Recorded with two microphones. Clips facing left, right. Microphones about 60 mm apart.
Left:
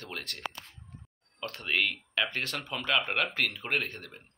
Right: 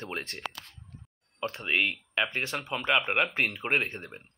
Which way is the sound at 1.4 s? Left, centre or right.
Right.